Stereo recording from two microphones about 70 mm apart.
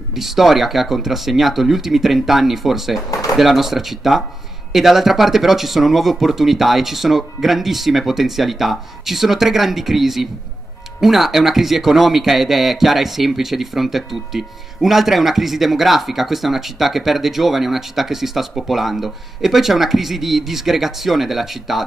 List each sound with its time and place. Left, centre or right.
0.1 s a man's voice: centre
3.1 s pigeon: left
3.3 s a man's voice: centre